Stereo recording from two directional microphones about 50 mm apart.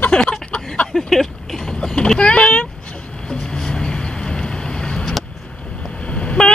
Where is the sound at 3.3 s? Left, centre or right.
Centre.